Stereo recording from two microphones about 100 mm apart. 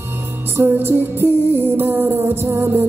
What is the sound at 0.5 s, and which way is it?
Music, 25° right (ahead or behind).